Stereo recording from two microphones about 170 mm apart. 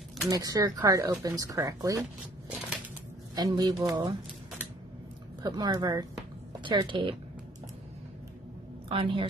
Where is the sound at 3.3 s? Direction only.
25° right (ahead or behind).